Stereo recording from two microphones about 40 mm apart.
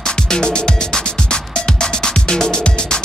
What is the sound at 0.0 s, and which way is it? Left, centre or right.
Music, centre.